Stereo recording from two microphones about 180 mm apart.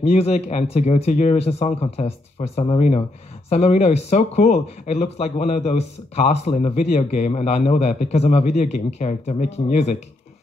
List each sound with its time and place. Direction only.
0.0 s speech: 35° left (ahead or behind)